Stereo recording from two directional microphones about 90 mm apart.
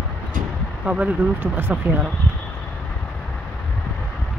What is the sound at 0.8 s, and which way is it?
Speech, 15° right (ahead or behind).